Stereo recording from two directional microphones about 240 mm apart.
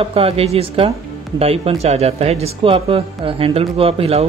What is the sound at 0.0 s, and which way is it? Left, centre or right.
Speech, right.